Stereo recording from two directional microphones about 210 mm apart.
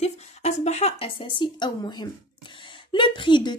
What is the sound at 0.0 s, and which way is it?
A woman's voice, 30° left (ahead or behind).